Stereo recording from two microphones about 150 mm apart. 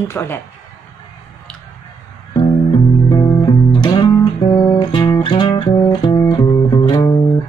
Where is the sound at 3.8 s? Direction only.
30° left (ahead or behind).